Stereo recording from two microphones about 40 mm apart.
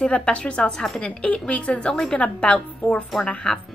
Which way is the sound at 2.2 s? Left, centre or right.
Left.